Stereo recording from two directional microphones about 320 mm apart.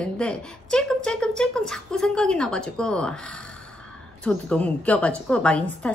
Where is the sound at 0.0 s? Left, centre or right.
Centre.